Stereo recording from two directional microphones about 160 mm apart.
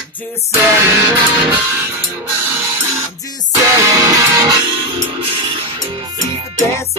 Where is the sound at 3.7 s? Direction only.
20° right (ahead or behind).